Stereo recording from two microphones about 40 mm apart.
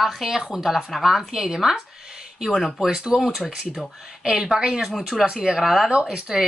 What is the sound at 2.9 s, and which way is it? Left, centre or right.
Speech, centre.